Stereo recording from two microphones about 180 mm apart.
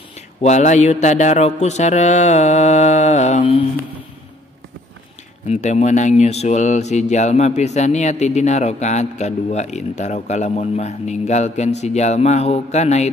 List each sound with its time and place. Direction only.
0.4 s speech: 40° left (ahead or behind)
5.5 s speech: 40° left (ahead or behind)